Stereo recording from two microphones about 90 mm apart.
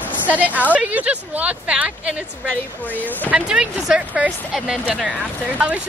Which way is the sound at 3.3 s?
15° right (ahead or behind).